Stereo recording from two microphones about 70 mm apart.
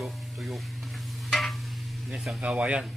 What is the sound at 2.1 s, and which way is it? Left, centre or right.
Speech, centre.